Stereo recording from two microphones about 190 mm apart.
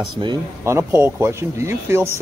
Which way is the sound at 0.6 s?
15° right (ahead or behind).